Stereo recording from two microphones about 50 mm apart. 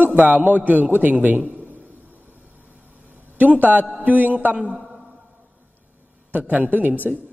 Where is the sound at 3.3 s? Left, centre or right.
Right.